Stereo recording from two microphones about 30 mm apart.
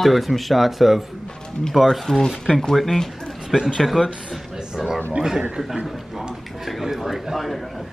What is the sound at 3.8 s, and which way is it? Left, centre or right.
Speech, centre.